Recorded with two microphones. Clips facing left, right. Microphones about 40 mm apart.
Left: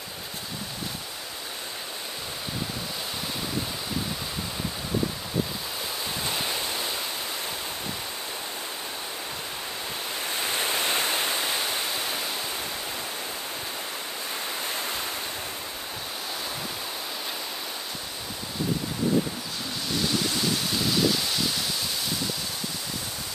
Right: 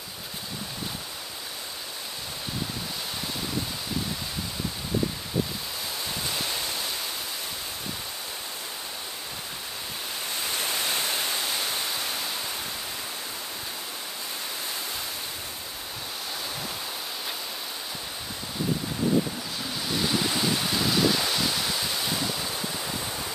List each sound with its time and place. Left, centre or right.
6.2 s waves: centre
10.3 s waterfall: left
20.0 s ocean: centre